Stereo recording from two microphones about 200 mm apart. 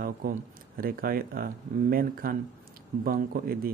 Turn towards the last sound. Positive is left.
turn(degrees=-50)  # may be behind; listen again after turning